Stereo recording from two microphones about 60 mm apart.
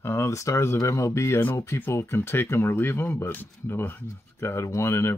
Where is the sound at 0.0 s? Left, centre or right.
Left.